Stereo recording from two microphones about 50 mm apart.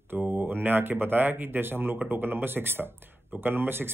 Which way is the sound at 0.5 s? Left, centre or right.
Right.